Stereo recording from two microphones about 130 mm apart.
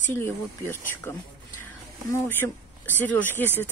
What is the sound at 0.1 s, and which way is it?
Speech, 15° left (ahead or behind).